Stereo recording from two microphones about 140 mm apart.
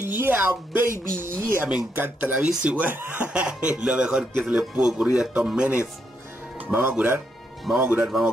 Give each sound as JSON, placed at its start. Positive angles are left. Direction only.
{"t": 0.2, "sound": "speech", "side_deg": -15}